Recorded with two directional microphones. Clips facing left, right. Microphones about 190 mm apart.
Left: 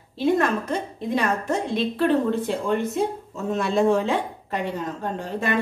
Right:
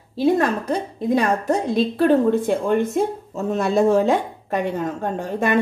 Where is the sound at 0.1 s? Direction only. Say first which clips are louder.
Right 3 dB; 40° right (ahead or behind).